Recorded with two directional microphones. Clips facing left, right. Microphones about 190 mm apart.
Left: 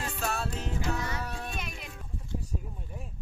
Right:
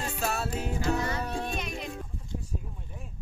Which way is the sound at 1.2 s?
25° right (ahead or behind).